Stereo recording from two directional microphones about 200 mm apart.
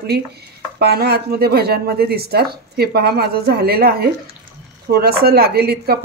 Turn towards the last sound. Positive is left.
turn(degrees=-50)  # may be behind; listen again after turning